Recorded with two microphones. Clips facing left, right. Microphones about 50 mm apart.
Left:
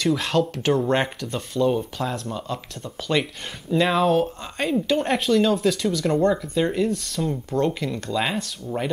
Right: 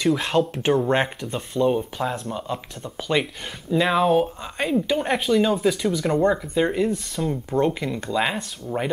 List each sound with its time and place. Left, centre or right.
0.0 s speech: centre
0.4 s speech: right